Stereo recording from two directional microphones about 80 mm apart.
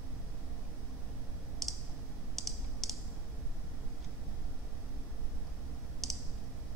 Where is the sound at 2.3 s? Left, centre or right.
Centre.